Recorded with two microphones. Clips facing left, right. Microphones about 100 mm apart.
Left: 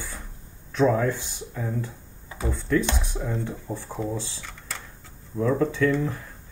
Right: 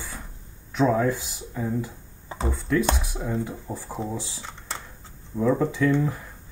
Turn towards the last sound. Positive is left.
turn(degrees=-10)  # may be behind; listen again after turning